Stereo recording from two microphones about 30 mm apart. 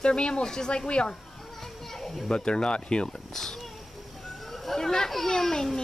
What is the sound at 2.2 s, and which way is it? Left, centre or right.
Speech, left.